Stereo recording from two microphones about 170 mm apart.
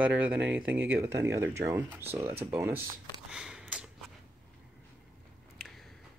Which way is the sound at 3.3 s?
5° right (ahead or behind).